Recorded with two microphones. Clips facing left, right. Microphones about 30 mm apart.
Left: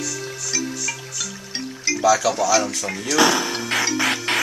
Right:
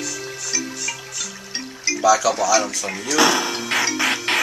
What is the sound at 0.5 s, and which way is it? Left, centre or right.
Music, centre.